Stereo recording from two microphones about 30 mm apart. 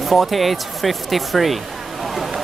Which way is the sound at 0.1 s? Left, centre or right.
Centre.